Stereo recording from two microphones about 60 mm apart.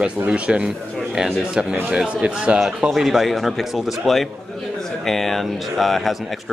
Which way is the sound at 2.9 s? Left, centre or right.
Centre.